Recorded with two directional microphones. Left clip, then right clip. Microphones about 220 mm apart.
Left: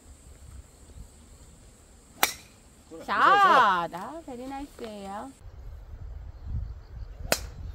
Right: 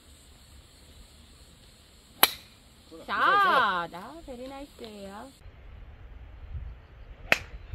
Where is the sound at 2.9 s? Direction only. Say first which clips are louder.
Left 3 dB; 60° left (ahead or behind).